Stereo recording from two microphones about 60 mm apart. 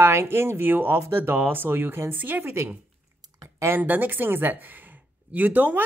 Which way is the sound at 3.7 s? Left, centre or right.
Right.